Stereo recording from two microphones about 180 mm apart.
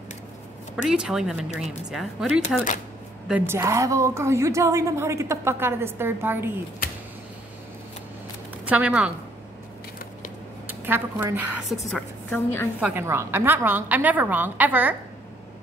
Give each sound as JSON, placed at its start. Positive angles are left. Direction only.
{"t": 0.8, "sound": "speech", "side_deg": -5}
{"t": 2.4, "sound": "speech", "side_deg": 45}
{"t": 3.3, "sound": "a woman's voice", "side_deg": -10}
{"t": 8.6, "sound": "a woman's voice", "side_deg": -5}
{"t": 10.7, "sound": "a woman's voice", "side_deg": -10}
{"t": 11.6, "sound": "a woman's voice", "side_deg": 5}
{"t": 12.8, "sound": "a woman's voice", "side_deg": -15}